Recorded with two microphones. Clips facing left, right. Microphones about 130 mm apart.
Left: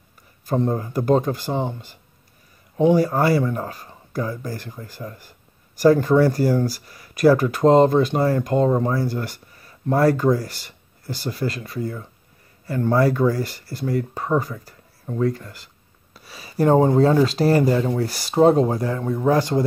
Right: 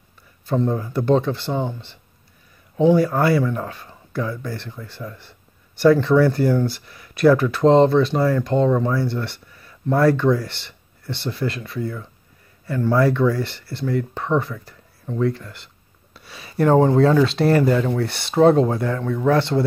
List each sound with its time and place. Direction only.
0.7 s speech: 35° left (ahead or behind)
1.6 s speech: 20° left (ahead or behind)
2.9 s speech: 30° left (ahead or behind)
16.7 s speech: 20° left (ahead or behind)
17.0 s speech: 35° left (ahead or behind)
18.9 s speech: 25° left (ahead or behind)
19.3 s speech: 40° left (ahead or behind)